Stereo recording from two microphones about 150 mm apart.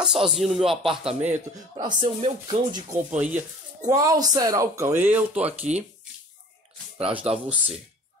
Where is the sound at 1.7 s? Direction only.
30° right (ahead or behind).